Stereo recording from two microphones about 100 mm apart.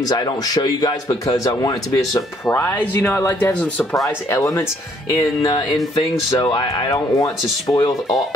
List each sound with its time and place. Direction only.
0.0 s a man's voice: 40° left (ahead or behind)
2.5 s speech: 20° left (ahead or behind)
5.1 s a man's voice: 40° left (ahead or behind)
5.9 s speech: 50° left (ahead or behind)